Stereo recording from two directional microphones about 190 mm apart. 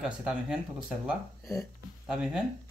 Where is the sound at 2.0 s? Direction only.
5° right (ahead or behind).